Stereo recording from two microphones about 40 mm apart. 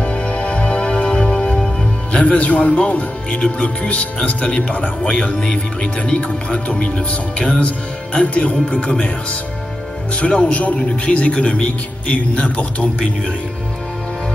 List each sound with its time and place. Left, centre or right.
0.0 s music: left
2.1 s speech: left
10.4 s speech: left